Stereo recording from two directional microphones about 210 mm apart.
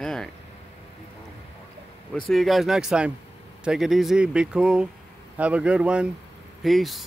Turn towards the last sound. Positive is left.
turn(degrees=0)  # may be behind; listen again after turning